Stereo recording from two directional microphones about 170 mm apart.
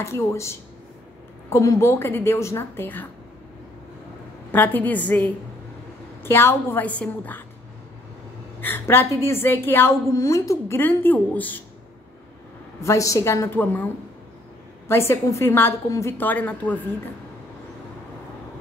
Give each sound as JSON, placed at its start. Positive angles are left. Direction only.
{"t": 0.0, "sound": "a woman's voice", "side_deg": 15}
{"t": 4.5, "sound": "a woman's voice", "side_deg": 10}
{"t": 8.5, "sound": "a woman's voice", "side_deg": 10}
{"t": 12.8, "sound": "a woman's voice", "side_deg": 20}
{"t": 14.9, "sound": "a woman's voice", "side_deg": 15}